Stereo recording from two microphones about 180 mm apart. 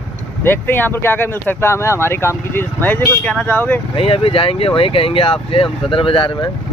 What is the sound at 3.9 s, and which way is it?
Speech, 30° left (ahead or behind).